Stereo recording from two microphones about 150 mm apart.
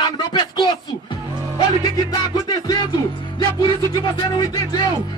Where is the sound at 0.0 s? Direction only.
30° left (ahead or behind).